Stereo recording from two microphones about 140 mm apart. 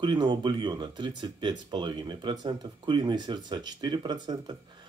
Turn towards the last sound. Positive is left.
turn(degrees=-30)  # may be behind; listen again after turning